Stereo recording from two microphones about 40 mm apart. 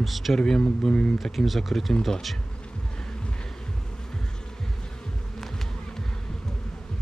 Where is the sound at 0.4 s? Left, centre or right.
Centre.